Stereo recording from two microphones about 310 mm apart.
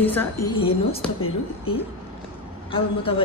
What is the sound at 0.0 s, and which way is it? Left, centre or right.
A woman's voice, centre.